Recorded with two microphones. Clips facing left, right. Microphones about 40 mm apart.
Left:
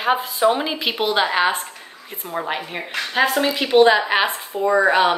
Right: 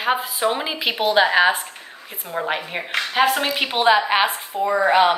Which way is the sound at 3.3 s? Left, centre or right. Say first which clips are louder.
Left 1 dB; right.